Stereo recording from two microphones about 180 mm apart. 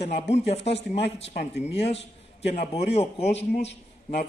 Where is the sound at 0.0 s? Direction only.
35° left (ahead or behind).